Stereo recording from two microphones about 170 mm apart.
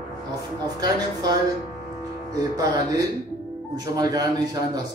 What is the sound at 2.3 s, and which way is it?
A man's voice, 20° right (ahead or behind).